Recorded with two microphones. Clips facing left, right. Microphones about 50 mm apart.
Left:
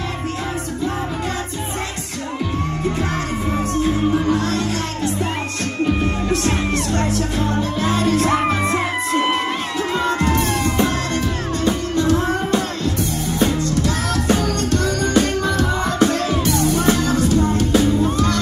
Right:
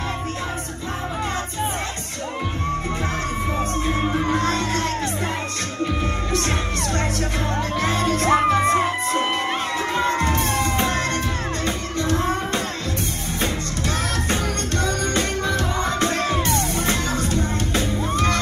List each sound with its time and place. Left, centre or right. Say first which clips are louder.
3.7 s music: left 7 dB; right
6.3 s music: left 4 dB; right
9.9 s music: left 3 dB; right